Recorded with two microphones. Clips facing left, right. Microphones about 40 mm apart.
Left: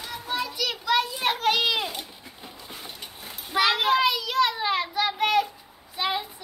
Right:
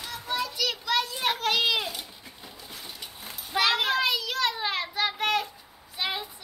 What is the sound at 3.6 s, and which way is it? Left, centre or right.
Child singing, centre.